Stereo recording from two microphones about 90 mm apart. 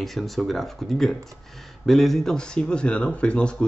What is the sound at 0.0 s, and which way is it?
Speech, centre (ahead or behind).